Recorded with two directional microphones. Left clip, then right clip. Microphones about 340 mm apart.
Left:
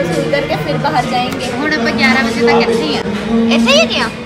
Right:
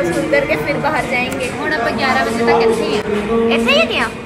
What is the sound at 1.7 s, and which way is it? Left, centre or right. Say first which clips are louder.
A woman's voice: left 3 dB; centre.